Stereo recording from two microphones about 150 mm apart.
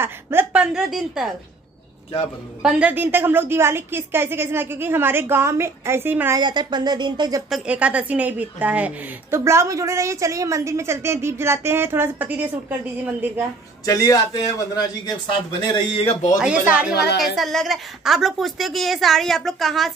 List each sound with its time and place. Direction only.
0.0 s a woman's voice: 15° right (ahead or behind)
2.6 s a woman's voice: 5° right (ahead or behind)
6.4 s speech: 30° right (ahead or behind)
7.4 s a woman's voice: 5° right (ahead or behind)
13.8 s speech: 25° left (ahead or behind)
15.9 s speech: 40° left (ahead or behind)
16.3 s a woman's voice: 5° right (ahead or behind)